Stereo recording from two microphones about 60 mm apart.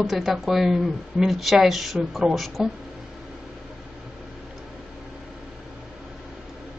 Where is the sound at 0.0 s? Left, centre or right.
Centre.